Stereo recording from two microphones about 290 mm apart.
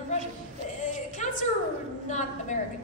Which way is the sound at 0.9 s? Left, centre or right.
Left.